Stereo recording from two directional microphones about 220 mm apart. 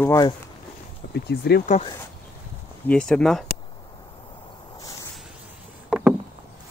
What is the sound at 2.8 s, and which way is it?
Speech, 5° left (ahead or behind).